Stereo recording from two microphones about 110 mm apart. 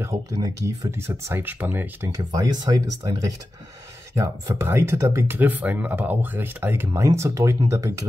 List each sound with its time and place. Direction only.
0.0 s speech: 30° right (ahead or behind)
2.0 s speech: 30° right (ahead or behind)
4.1 s speech: 25° right (ahead or behind)